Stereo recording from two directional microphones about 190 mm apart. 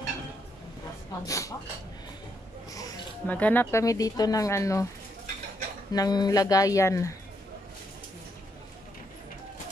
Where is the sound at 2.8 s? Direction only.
10° left (ahead or behind).